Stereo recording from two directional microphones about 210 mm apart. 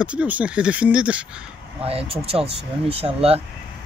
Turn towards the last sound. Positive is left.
turn(degrees=-30)  # may be behind; listen again after turning